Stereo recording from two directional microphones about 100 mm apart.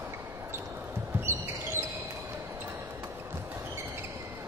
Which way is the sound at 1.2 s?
25° right (ahead or behind).